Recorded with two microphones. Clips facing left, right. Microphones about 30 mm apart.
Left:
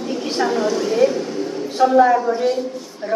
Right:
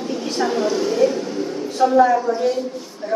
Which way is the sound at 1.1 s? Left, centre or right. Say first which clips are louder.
Even; centre.